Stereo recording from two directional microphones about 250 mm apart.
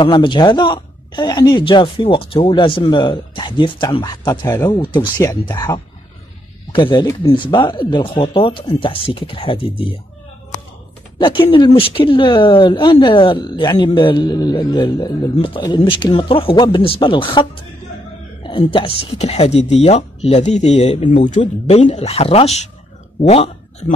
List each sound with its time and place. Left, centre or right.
0.0 s speech: centre
11.1 s a woman's voice: centre